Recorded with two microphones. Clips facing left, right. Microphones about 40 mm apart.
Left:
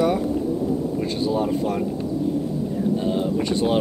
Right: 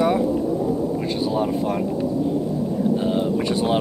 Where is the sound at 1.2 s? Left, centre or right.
Centre.